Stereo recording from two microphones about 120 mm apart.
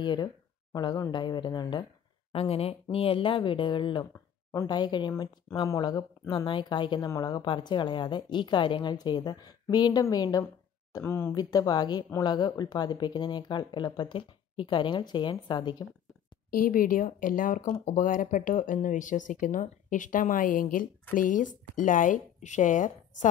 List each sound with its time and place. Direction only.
0.0 s speech: 40° left (ahead or behind)
2.3 s speech: 55° left (ahead or behind)
4.0 s a sound: 25° left (ahead or behind)
4.6 s speech: 35° left (ahead or behind)
10.9 s speech: 25° left (ahead or behind)
11.3 s speech: 30° left (ahead or behind)
17.8 s speech: 90° left